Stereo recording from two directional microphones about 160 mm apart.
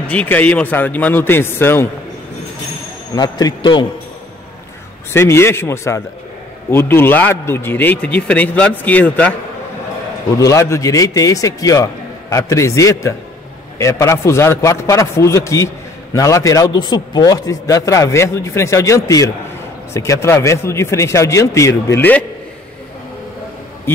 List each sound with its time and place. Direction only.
0.0 s a man's voice: 10° left (ahead or behind)
3.2 s a man's voice: 25° left (ahead or behind)
5.1 s a man's voice: 15° left (ahead or behind)
10.3 s a man's voice: 20° left (ahead or behind)